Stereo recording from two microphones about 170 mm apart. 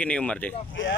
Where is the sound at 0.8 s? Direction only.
90° left.